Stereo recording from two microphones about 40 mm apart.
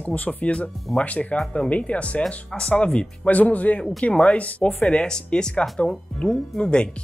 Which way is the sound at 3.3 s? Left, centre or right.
Left.